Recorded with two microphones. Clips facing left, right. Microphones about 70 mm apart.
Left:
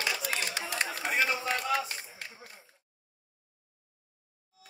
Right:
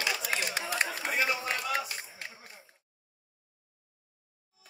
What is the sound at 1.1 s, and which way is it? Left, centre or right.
Run, left.